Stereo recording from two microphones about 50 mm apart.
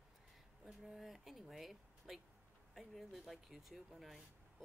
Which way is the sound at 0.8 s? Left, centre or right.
Centre.